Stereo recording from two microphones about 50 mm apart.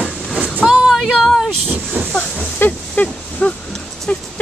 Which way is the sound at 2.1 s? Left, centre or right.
Left.